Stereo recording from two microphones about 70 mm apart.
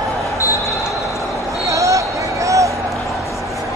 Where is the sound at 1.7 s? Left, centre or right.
Right.